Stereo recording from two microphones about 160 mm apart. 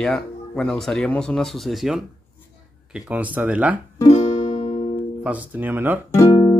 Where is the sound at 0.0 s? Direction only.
5° left (ahead or behind).